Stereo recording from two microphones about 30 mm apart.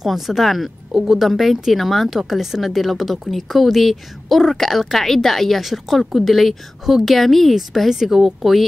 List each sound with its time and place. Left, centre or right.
0.0 s speech: centre
0.4 s a woman's voice: centre
0.9 s speech: centre
1.2 s a woman's voice: centre
5.6 s a woman's voice: centre
7.9 s speech: centre